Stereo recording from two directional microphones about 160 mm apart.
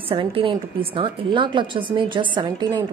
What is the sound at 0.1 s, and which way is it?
A woman's voice, 35° right (ahead or behind).